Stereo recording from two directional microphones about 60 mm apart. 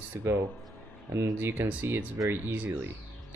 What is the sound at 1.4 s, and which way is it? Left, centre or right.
Speech, right.